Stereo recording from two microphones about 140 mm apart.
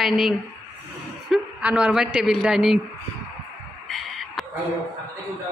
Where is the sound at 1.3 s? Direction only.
10° right (ahead or behind).